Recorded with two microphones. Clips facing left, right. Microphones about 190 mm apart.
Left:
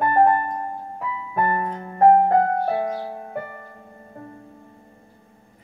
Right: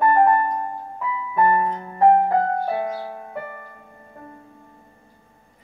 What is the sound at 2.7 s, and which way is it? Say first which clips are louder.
Music: left 1 dB; 40° left (ahead or behind).